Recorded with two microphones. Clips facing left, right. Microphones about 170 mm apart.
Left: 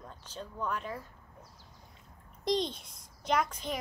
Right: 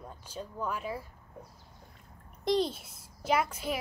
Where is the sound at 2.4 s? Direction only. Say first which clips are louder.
Right 3 dB; 5° right (ahead or behind).